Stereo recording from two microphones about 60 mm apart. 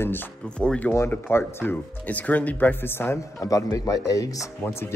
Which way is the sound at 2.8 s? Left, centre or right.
Left.